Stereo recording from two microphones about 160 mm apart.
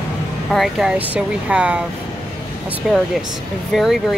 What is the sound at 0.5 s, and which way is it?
Speech, centre (ahead or behind).